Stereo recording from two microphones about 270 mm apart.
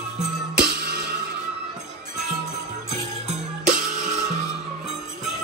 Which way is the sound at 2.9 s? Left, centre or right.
Right.